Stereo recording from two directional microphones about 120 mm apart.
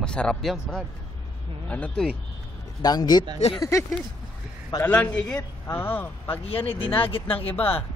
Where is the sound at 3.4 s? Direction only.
65° left (ahead or behind).